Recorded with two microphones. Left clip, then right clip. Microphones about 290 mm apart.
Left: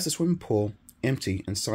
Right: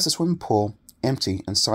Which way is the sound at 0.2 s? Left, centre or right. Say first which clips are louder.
Right 4 dB; centre.